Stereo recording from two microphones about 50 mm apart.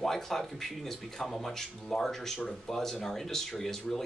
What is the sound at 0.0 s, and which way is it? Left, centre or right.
Speech, centre.